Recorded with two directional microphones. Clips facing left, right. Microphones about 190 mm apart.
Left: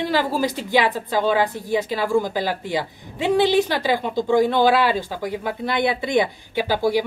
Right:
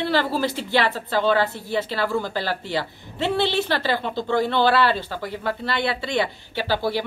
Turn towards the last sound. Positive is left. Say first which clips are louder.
# left 4 dB
turn(degrees=15)  # may be behind; listen again after turning